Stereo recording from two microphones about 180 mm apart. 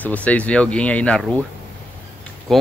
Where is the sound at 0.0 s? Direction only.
10° left (ahead or behind).